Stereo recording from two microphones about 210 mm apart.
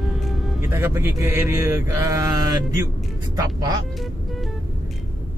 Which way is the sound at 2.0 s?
15° right (ahead or behind).